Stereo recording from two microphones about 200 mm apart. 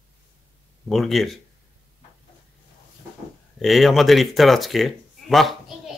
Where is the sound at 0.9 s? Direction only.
Centre (ahead or behind).